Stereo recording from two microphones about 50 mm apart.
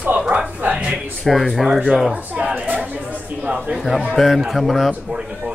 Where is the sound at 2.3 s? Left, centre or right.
Right.